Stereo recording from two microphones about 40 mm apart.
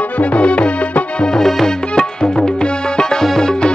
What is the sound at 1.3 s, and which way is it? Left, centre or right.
Music, centre.